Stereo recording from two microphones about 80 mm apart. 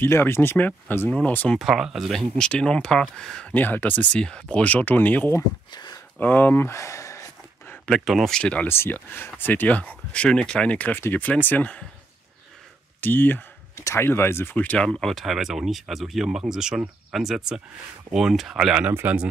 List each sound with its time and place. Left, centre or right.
0.0 s speech: left
1.6 s speech: centre
3.5 s speech: left
5.7 s speech: left
6.1 s speech: left
7.8 s speech: centre
8.4 s speech: centre
8.6 s speech: left
13.0 s a sound: left
13.8 s speech: left
14.6 s speech: centre
14.9 s speech: centre
18.9 s speech: right